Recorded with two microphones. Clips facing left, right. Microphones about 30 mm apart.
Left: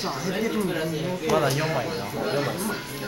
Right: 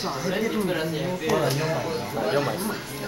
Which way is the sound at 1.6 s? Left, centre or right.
Centre.